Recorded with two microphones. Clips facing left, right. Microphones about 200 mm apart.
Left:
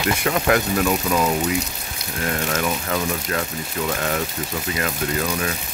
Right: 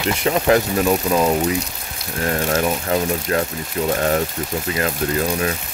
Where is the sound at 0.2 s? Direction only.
25° right (ahead or behind).